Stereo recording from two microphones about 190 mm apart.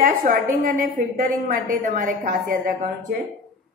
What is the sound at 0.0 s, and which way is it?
A woman's voice, 45° right (ahead or behind).